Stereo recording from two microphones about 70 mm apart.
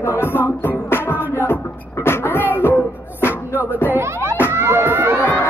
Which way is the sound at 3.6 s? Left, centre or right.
Left.